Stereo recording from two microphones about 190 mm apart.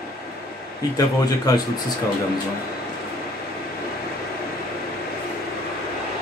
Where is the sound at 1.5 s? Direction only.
20° left (ahead or behind).